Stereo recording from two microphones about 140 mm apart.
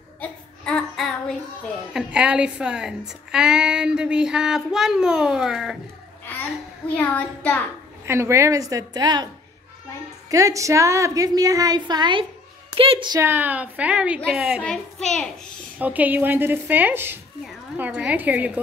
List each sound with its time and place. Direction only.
0.2 s child singing: 5° left (ahead or behind)
2.0 s a woman's voice: 5° right (ahead or behind)
7.0 s speech: 10° left (ahead or behind)
8.0 s a woman's voice: 20° right (ahead or behind)
10.3 s a woman's voice: 25° right (ahead or behind); by 13.1 s 40° right (ahead or behind)
13.1 s a woman's voice: 15° right (ahead or behind)
14.6 s a woman's voice: 5° left (ahead or behind)
15.8 s a woman's voice: 10° right (ahead or behind)